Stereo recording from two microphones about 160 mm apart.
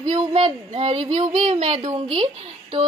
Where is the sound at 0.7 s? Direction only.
40° right (ahead or behind).